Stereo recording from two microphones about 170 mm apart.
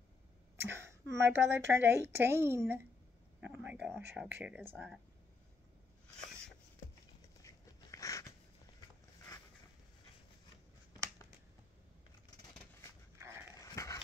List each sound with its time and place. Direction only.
0.6 s a woman's voice: 15° right (ahead or behind)
7.4 s dog: 20° left (ahead or behind)
13.2 s a sound: 15° right (ahead or behind)
13.6 s dog: 20° left (ahead or behind)